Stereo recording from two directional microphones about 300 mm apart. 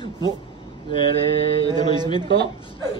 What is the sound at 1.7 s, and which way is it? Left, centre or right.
Speech, centre.